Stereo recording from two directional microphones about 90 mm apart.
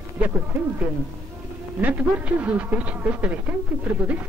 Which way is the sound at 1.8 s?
20° right (ahead or behind).